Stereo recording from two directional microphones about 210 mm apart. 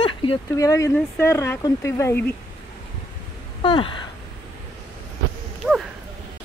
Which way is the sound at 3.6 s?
25° left (ahead or behind).